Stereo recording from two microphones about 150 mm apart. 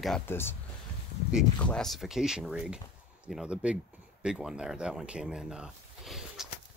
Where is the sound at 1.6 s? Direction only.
5° left (ahead or behind).